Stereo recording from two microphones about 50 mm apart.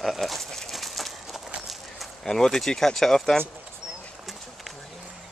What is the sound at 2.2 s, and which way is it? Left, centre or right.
Speech, centre.